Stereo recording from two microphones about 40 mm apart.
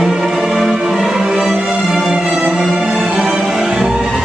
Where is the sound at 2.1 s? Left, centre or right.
Centre.